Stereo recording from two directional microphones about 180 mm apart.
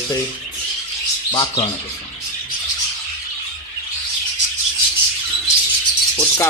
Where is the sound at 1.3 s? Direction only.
25° left (ahead or behind).